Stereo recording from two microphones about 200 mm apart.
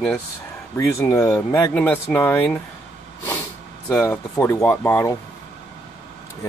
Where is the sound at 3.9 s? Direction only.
10° left (ahead or behind).